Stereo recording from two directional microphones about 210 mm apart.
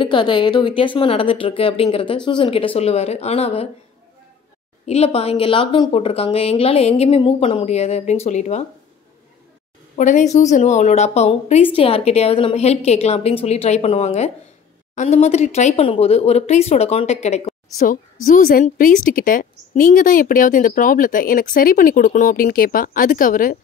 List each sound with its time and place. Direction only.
0.0 s speech: 25° left (ahead or behind)
4.8 s speech: 30° left (ahead or behind)
9.9 s a woman's voice: 35° left (ahead or behind)